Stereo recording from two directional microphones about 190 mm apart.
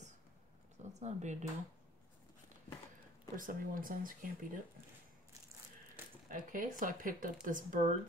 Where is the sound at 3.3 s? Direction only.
45° right (ahead or behind).